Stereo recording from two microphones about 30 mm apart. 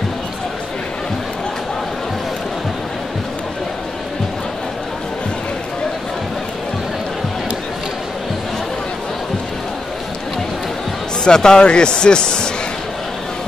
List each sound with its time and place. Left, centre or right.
11.2 s a man's voice: left